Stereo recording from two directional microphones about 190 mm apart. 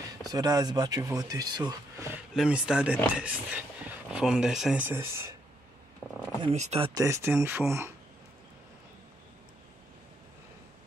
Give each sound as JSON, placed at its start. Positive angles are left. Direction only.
{"t": 0.0, "sound": "speech", "side_deg": -20}
{"t": 2.3, "sound": "speech", "side_deg": -5}
{"t": 6.4, "sound": "speech", "side_deg": -35}
{"t": 6.9, "sound": "speech", "side_deg": -15}